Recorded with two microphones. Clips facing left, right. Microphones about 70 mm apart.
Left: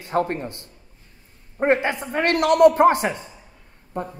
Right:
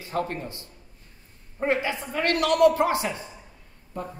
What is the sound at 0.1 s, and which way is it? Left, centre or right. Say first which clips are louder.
A man's voice: left 6 dB; left.